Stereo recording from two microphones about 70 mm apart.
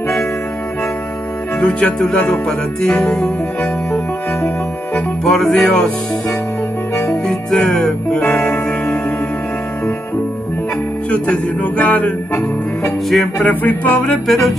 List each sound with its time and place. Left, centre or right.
1.6 s music: centre
2.0 s music: centre
5.2 s music: centre
7.1 s music: centre
11.1 s music: centre
14.2 s music: centre